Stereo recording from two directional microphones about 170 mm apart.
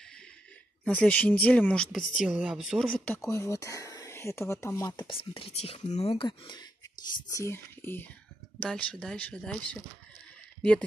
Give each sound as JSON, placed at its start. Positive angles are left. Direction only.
{"t": 0.8, "sound": "speech", "side_deg": 5}
{"t": 3.3, "sound": "speech", "side_deg": 20}
{"t": 6.2, "sound": "speech", "side_deg": 25}